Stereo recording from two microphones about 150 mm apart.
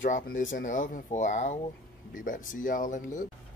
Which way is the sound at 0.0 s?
60° left (ahead or behind).